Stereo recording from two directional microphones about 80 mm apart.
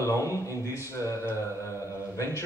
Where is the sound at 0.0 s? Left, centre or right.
Left.